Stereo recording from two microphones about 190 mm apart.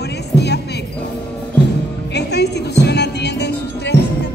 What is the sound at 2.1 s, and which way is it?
Music, 60° left (ahead or behind).